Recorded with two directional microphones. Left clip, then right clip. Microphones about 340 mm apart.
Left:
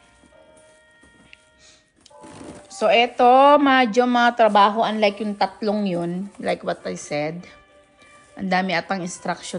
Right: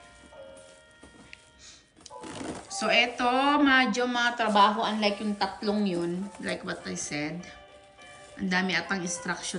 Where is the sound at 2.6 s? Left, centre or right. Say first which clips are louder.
Left 7 dB; centre.